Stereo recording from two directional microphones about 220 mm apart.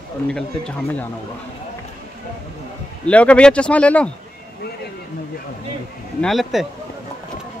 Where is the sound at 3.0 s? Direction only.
5° left (ahead or behind).